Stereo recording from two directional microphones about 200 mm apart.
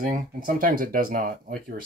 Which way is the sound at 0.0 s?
40° right (ahead or behind).